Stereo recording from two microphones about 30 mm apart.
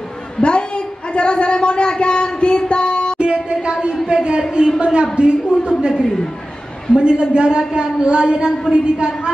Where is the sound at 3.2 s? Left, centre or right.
Right.